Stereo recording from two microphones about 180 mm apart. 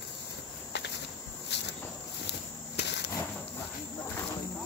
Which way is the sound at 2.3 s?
70° left (ahead or behind).